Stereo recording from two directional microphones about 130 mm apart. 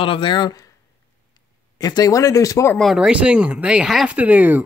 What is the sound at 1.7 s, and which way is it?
Speech, 30° left (ahead or behind).